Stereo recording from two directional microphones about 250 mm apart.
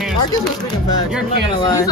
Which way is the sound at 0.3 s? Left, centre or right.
Centre.